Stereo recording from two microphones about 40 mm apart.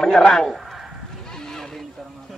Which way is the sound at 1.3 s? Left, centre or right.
Centre.